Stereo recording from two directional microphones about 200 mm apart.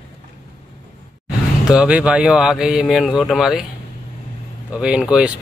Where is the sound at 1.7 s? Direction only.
5° right (ahead or behind).